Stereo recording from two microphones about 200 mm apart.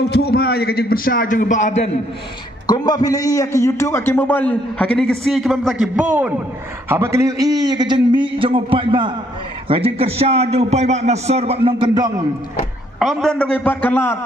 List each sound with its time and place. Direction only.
0.1 s a man's voice: 50° left (ahead or behind); by 1.9 s 35° left (ahead or behind)
2.6 s a man's voice: 20° left (ahead or behind); by 12.1 s 20° right (ahead or behind)
13.0 s a man's voice: centre (ahead or behind)